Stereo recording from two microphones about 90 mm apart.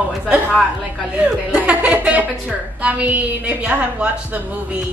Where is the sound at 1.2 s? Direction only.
15° right (ahead or behind).